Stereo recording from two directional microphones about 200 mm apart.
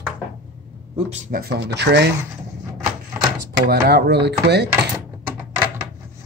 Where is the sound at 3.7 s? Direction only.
50° right (ahead or behind).